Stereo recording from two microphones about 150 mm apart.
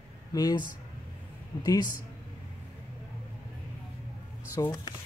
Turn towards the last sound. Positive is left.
turn(degrees=30)  # may be behind; listen again after turning